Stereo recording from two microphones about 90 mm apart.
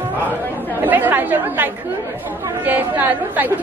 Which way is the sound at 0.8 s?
20° right (ahead or behind).